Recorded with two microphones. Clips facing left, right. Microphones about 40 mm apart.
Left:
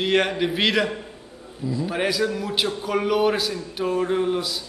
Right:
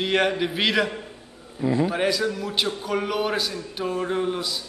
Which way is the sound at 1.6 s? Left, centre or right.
Right.